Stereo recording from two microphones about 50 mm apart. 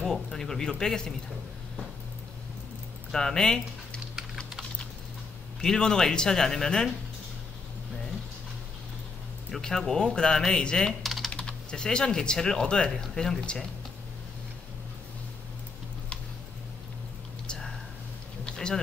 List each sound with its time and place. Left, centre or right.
0.0 s speech: centre
3.1 s speech: centre
5.6 s speech: centre
9.5 s speech: centre
11.0 s typing: centre
11.3 s speech: centre
17.5 s a sound: centre